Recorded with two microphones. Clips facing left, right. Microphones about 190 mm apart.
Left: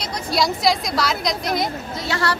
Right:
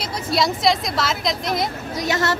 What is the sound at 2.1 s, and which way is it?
Speech, 20° right (ahead or behind).